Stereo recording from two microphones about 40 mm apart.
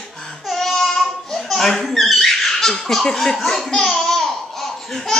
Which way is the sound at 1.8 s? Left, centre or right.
Centre.